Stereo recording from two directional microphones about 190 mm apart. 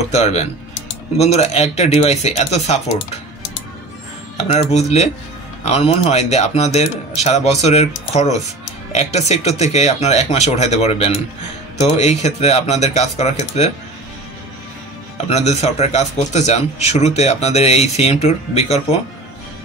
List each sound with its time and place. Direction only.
0.1 s speech: 35° left (ahead or behind)
4.4 s speech: 35° left (ahead or behind)
15.2 s speech: 35° left (ahead or behind)